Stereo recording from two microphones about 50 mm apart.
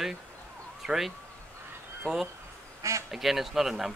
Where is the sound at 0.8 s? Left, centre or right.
Centre.